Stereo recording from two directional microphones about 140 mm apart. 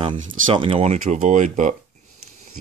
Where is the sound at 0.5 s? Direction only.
40° right (ahead or behind); by 1.7 s 65° right (ahead or behind).